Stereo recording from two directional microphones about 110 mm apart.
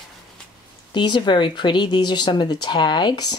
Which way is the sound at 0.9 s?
45° left (ahead or behind).